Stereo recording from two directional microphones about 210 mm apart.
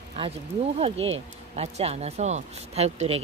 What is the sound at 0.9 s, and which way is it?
Speech, 70° right (ahead or behind).